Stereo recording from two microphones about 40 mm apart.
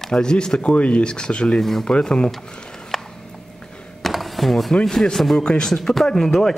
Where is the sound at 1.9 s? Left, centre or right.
Left.